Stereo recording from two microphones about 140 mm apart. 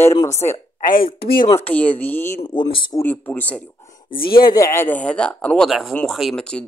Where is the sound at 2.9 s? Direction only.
15° left (ahead or behind).